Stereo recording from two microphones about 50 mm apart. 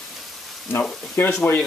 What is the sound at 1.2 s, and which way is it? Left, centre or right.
Speech, left.